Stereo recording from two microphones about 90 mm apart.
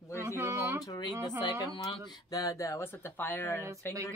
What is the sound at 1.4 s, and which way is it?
Speech, 55° left (ahead or behind).